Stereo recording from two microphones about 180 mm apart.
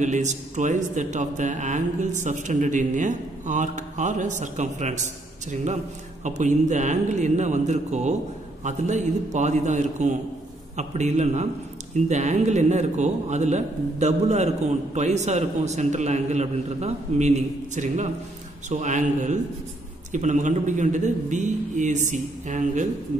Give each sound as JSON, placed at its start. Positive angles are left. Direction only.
{"t": 0.0, "sound": "a man's voice", "side_deg": -40}